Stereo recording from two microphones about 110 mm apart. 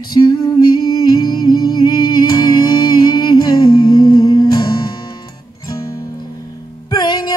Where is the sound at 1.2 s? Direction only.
40° left (ahead or behind).